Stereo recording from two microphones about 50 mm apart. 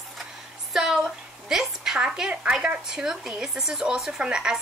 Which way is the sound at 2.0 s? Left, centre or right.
Right.